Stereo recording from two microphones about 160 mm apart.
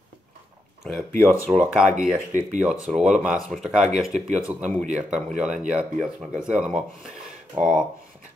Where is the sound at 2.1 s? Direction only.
55° right (ahead or behind).